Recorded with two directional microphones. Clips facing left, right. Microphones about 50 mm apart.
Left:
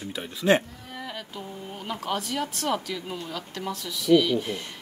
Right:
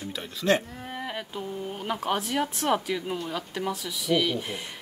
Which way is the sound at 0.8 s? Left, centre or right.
Right.